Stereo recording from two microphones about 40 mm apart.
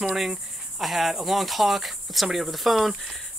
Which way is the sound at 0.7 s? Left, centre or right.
Centre.